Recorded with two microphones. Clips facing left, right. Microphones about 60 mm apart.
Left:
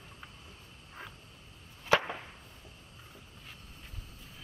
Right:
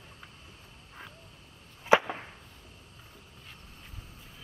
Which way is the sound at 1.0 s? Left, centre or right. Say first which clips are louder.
Left 1 dB; centre.